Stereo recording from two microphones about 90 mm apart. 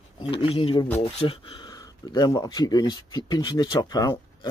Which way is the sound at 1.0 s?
85° left.